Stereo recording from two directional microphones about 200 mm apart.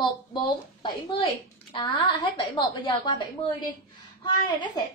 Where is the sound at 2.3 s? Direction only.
20° left (ahead or behind).